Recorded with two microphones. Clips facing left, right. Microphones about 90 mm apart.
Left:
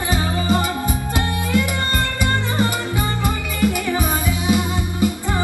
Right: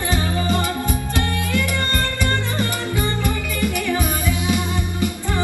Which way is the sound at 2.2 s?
20° left (ahead or behind).